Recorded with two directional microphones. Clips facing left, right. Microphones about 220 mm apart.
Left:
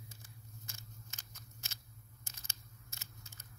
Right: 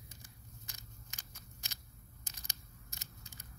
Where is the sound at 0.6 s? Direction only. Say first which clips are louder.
Left 2 dB; 15° right (ahead or behind).